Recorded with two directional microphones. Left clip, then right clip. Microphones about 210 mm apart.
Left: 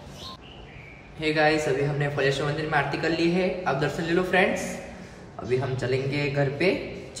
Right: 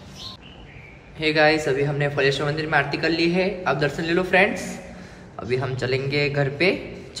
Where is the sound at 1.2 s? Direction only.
5° left (ahead or behind).